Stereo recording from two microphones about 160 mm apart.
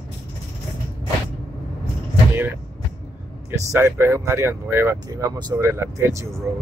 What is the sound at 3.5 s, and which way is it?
Speech, 15° right (ahead or behind).